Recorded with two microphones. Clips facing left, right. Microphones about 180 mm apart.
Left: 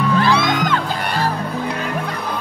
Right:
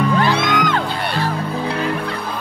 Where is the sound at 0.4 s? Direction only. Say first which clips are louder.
Even; 50° right (ahead or behind).